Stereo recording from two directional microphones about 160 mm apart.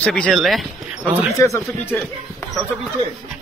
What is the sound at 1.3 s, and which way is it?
Speech, 20° left (ahead or behind).